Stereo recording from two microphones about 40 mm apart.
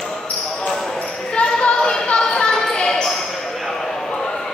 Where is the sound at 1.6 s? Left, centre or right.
Centre.